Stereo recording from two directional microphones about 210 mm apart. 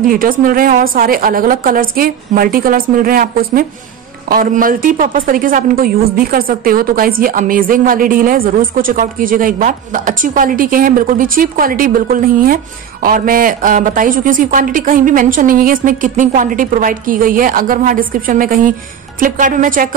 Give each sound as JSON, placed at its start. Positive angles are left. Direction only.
{"t": 0.0, "sound": "a woman's voice", "side_deg": -40}